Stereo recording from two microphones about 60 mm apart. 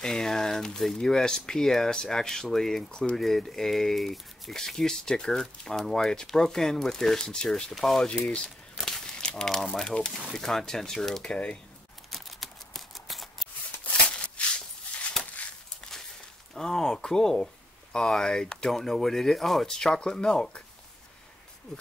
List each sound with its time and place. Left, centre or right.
0.0 s speech: centre
8.7 s a sound: centre
9.2 s speech: centre
12.1 s scissors: centre
14.4 s a sound: centre
16.5 s speech: centre